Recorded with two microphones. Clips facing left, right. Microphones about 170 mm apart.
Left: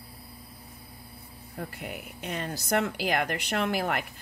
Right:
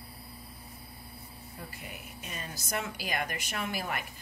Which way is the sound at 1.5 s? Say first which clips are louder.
Left 9 dB; 60° left (ahead or behind).